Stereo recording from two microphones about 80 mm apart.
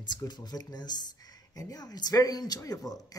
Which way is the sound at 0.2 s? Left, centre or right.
Left.